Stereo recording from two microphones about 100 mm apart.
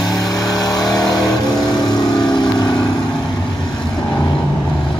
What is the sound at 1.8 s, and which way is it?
Vehicle, 5° left (ahead or behind).